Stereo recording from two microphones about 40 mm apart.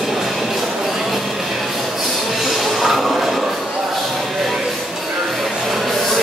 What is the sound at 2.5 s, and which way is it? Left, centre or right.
Music, centre.